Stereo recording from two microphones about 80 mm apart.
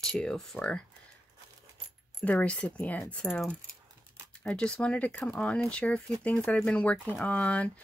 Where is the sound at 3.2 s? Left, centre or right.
Centre.